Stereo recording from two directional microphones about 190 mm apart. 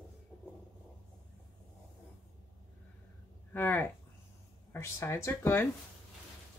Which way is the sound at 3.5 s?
15° left (ahead or behind).